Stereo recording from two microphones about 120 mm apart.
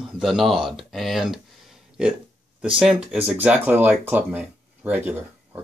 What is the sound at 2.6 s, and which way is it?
Speech, 5° right (ahead or behind).